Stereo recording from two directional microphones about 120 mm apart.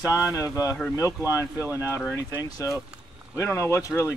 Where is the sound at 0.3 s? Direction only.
25° left (ahead or behind).